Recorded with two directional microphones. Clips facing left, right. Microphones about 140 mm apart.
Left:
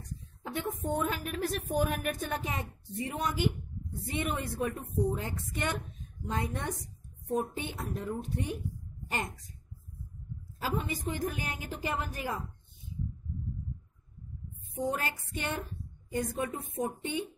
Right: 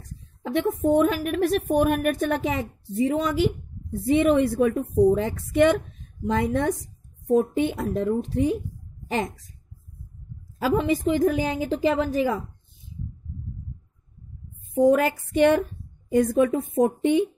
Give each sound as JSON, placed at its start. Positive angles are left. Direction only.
{"t": 0.4, "sound": "a woman's voice", "side_deg": -75}
{"t": 6.2, "sound": "a woman's voice", "side_deg": -75}
{"t": 10.6, "sound": "a woman's voice", "side_deg": -90}
{"t": 14.7, "sound": "a woman's voice", "side_deg": -90}